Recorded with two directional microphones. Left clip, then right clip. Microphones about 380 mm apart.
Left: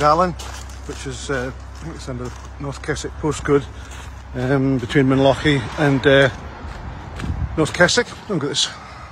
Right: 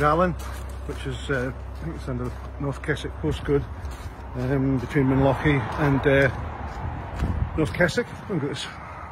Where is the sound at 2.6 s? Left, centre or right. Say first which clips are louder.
Left 3 dB; centre.